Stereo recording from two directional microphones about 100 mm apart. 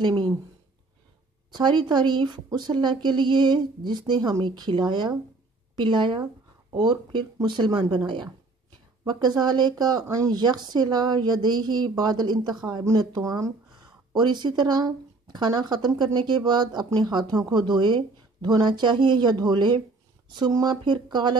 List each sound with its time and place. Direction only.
0.0 s speech: 55° right (ahead or behind)
1.5 s speech: 50° right (ahead or behind)
14.1 s speech: 45° right (ahead or behind)